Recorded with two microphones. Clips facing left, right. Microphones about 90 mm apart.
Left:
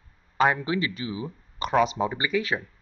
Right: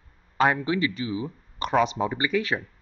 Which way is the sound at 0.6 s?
25° left (ahead or behind).